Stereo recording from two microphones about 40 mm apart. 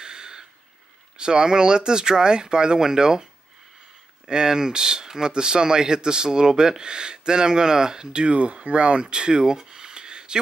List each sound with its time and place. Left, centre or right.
0.0 s a sound: centre
1.1 s speech: centre
4.3 s speech: centre
9.0 s speech: centre